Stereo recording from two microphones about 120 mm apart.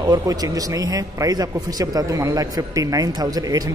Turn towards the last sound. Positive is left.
turn(degrees=-30)  # may be behind; listen again after turning